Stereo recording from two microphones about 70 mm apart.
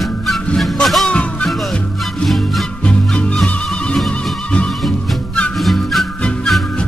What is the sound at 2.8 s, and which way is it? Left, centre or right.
Music, centre.